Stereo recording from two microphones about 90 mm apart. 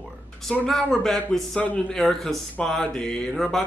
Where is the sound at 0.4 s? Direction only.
5° left (ahead or behind).